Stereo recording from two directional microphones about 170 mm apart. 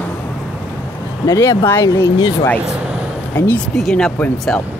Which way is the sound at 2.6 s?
5° right (ahead or behind).